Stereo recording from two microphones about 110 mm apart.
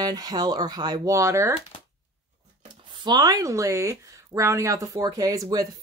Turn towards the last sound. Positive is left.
turn(degrees=-35)  # may be behind; listen again after turning